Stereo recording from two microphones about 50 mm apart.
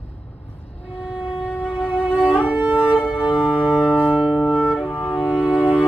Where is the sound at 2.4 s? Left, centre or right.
Right.